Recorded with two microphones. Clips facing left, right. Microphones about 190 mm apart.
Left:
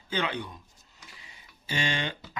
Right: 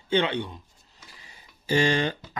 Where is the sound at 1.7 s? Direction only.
40° right (ahead or behind).